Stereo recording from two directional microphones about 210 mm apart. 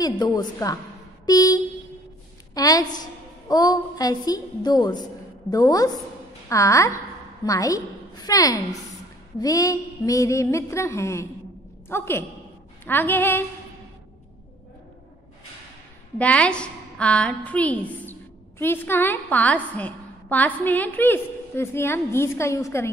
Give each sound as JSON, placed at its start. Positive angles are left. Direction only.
{"t": 0.0, "sound": "a woman's voice", "side_deg": 20}
{"t": 1.2, "sound": "a sound", "side_deg": 15}
{"t": 2.5, "sound": "a woman's voice", "side_deg": 15}
{"t": 16.2, "sound": "a woman's voice", "side_deg": 5}